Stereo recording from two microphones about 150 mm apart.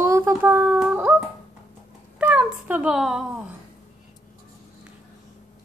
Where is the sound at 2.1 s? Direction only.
10° right (ahead or behind).